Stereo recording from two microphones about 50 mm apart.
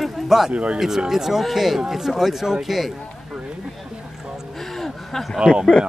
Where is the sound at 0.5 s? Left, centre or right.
Right.